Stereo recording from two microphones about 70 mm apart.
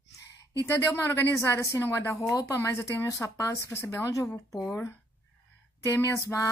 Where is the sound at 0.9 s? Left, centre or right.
Left.